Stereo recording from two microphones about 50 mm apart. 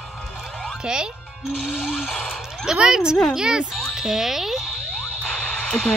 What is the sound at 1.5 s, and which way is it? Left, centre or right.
Speech, centre.